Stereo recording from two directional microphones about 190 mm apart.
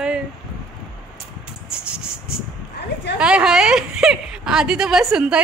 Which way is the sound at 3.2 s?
5° right (ahead or behind).